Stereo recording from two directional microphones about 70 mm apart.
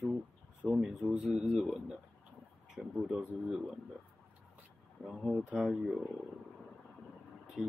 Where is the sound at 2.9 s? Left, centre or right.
Centre.